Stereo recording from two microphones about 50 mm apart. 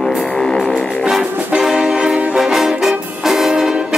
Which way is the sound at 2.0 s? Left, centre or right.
Right.